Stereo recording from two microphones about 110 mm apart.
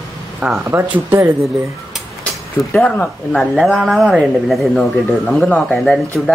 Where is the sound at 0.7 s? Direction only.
20° right (ahead or behind).